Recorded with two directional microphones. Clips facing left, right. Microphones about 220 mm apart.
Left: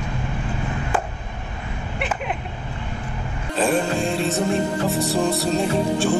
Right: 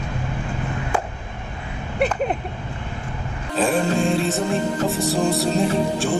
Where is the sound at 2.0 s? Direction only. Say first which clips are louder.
Right 7 dB; 40° right (ahead or behind).